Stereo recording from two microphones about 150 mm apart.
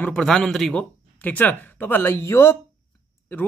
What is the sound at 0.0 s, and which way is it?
Speech, 5° left (ahead or behind).